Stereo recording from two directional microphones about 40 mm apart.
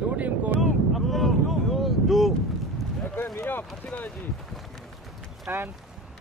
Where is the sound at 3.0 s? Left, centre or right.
Left.